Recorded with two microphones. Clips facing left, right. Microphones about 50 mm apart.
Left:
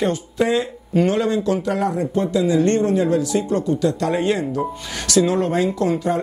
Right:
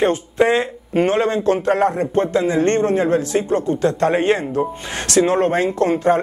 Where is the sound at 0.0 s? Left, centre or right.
Right.